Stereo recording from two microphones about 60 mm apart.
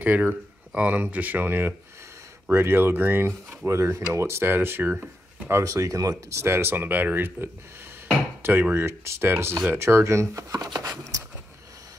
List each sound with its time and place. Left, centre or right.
0.0 s speech: right
3.6 s speech: right
5.6 s speech: right
6.4 s speech: right